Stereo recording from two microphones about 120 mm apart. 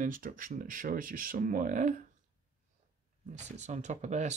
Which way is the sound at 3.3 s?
75° right (ahead or behind).